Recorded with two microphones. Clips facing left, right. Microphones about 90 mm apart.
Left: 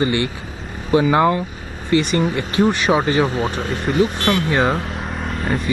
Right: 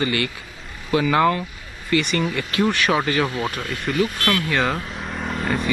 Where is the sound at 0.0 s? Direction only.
25° left (ahead or behind).